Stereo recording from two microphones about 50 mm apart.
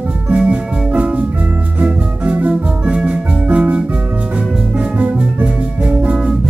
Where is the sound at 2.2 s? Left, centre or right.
Right.